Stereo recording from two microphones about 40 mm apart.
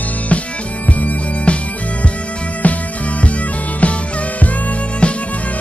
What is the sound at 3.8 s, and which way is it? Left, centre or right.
Music, left.